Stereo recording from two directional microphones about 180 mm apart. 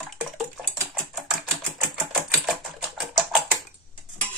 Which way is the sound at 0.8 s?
5° right (ahead or behind).